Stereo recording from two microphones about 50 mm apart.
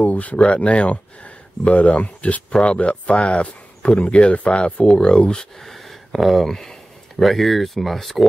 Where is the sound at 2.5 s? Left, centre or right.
Left.